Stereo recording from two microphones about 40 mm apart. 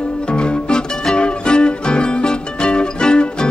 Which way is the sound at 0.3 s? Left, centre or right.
Left.